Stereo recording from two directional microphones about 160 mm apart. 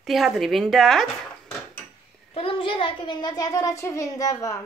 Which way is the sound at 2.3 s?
35° left (ahead or behind).